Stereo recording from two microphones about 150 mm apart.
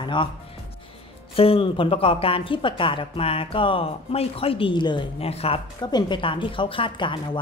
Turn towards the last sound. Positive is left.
turn(degrees=35)  # may be behind; listen again after turning